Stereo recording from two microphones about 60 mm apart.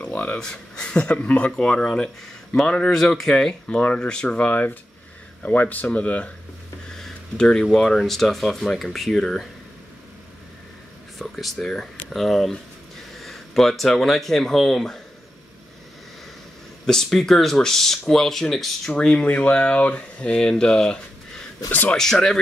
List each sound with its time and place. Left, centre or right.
0.0 s a sound: left
0.4 s speech: centre
3.0 s speech: centre; by 6.3 s left
7.0 s a sound: centre
7.6 s speech: centre
11.1 s speech: centre
16.8 s speech: centre
18.9 s speech: centre
21.6 s speech: left
21.9 s speech: centre